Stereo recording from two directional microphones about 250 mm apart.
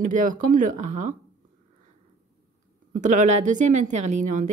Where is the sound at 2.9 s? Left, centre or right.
Right.